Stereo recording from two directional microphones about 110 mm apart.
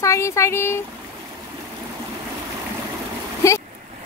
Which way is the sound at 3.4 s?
30° left (ahead or behind).